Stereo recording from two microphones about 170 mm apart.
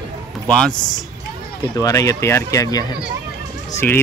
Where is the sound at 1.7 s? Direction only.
20° left (ahead or behind).